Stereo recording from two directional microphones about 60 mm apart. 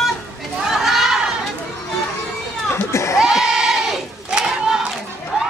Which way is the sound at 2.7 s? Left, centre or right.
Left.